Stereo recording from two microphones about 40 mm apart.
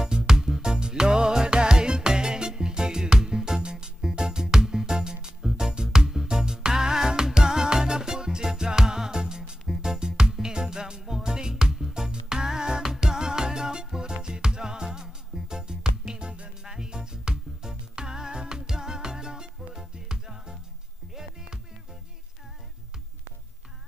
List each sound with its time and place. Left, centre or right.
0.0 s music: centre